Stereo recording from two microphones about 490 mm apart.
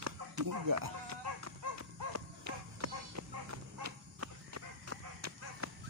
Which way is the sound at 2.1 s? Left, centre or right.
Right.